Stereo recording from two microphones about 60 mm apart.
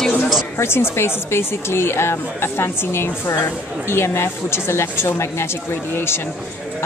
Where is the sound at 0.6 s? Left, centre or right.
Left.